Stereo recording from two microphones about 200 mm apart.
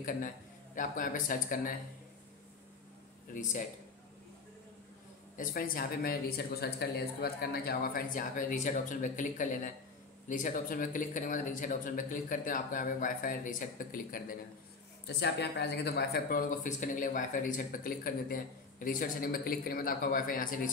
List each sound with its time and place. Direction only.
0.7 s speech: 40° left (ahead or behind)
5.4 s speech: 45° left (ahead or behind)
15.0 s speech: 55° left (ahead or behind)